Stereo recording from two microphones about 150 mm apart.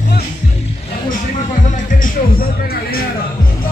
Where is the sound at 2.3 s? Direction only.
90° left.